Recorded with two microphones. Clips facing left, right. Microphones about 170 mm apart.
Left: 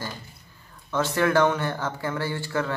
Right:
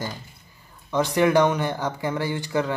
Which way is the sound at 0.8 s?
15° right (ahead or behind).